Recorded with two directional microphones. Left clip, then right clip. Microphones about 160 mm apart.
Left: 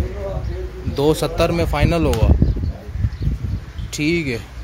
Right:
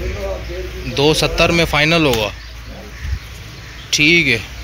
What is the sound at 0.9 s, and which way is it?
Speech, 20° left (ahead or behind).